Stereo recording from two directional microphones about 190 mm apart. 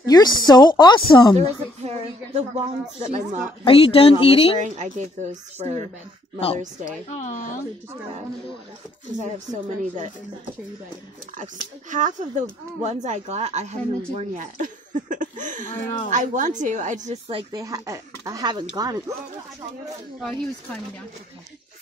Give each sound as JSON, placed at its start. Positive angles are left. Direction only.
{"t": 0.0, "sound": "speech", "side_deg": 20}
{"t": 1.4, "sound": "speech", "side_deg": -35}
{"t": 3.6, "sound": "speech", "side_deg": 30}
{"t": 4.6, "sound": "speech", "side_deg": -40}
{"t": 7.1, "sound": "a woman's voice", "side_deg": 40}
{"t": 9.2, "sound": "speech", "side_deg": -40}
{"t": 11.9, "sound": "a woman's voice", "side_deg": -40}
{"t": 20.2, "sound": "speech", "side_deg": 0}